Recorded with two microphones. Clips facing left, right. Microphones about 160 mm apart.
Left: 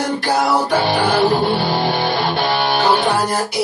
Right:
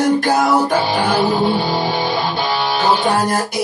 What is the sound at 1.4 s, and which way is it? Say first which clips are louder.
Music: even; 60° left (ahead or behind).